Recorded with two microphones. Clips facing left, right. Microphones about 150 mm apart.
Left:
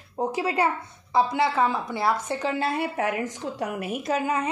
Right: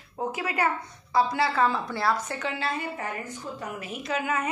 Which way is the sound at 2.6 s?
60° left (ahead or behind).